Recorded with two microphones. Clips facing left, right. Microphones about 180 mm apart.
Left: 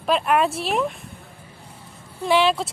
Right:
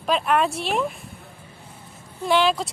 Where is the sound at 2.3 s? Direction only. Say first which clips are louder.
Left 1 dB; 5° left (ahead or behind).